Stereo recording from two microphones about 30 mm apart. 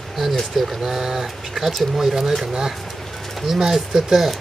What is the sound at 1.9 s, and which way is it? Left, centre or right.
A man's voice, centre.